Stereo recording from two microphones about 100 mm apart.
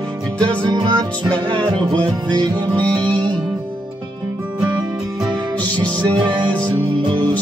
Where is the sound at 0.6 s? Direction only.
50° right (ahead or behind).